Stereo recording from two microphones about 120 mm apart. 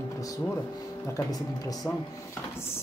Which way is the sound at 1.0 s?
25° left (ahead or behind).